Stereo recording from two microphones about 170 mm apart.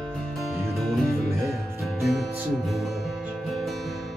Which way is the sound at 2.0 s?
Centre (ahead or behind).